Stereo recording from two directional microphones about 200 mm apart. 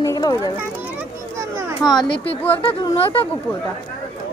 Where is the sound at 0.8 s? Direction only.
10° right (ahead or behind).